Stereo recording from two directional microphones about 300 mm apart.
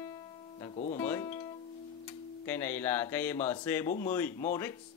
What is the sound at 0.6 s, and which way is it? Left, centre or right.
Music, centre.